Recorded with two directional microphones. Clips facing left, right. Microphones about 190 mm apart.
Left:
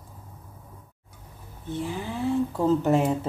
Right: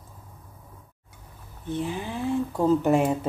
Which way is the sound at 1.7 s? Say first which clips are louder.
Right 1 dB; 20° right (ahead or behind).